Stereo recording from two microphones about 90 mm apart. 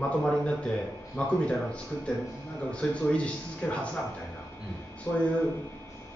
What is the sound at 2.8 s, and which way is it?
Speech, 10° left (ahead or behind).